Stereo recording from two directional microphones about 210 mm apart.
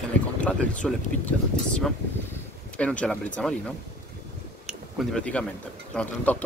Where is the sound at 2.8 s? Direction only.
5° left (ahead or behind).